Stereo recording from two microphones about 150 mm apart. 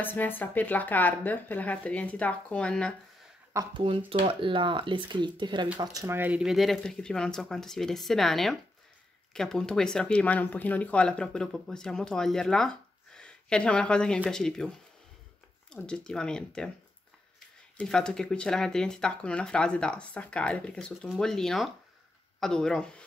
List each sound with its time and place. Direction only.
0.0 s speech: 15° left (ahead or behind)
3.7 s speech: 35° right (ahead or behind)
5.8 s speech: 20° right (ahead or behind); by 14.7 s 5° left (ahead or behind)
15.7 s speech: 5° left (ahead or behind)
17.7 s speech: 5° left (ahead or behind)